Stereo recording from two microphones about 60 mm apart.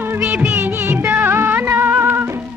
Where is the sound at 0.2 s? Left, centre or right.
Right.